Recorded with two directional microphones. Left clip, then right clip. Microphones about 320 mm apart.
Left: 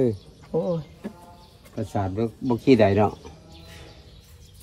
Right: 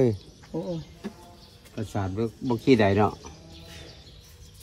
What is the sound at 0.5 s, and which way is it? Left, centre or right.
Speech, left.